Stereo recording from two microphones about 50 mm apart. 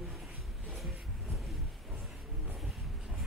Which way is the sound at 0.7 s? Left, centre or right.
Centre.